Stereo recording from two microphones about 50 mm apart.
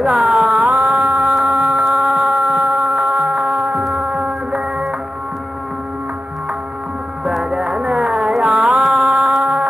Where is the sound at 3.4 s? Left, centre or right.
Right.